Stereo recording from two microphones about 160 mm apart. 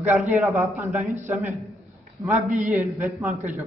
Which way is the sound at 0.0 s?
10° right (ahead or behind).